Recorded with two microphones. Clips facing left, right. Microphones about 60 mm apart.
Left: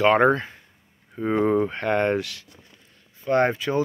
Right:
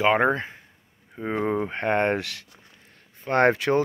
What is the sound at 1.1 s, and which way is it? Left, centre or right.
Speech, centre.